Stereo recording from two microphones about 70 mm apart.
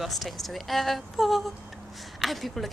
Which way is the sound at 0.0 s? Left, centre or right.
Centre.